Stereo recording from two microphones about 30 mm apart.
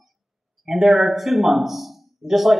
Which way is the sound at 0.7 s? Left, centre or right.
Centre.